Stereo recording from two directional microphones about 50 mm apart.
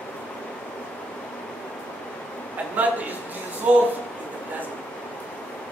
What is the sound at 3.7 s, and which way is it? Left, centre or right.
Speech, right.